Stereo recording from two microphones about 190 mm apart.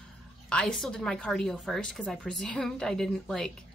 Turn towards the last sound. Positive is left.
turn(degrees=5)  # may be behind; listen again after turning